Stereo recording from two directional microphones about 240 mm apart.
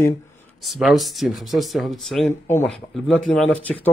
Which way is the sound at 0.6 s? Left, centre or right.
Centre.